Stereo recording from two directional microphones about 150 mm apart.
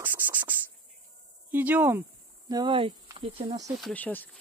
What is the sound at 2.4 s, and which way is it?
Speech, 30° right (ahead or behind).